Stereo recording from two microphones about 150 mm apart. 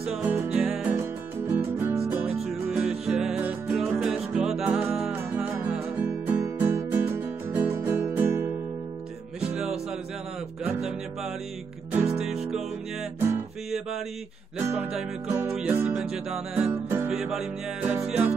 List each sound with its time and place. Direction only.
0.0 s music: 5° right (ahead or behind)
1.5 s music: 15° right (ahead or behind)
11.9 s music: 15° right (ahead or behind)
12.2 s music: centre (ahead or behind)
14.6 s music: 10° right (ahead or behind)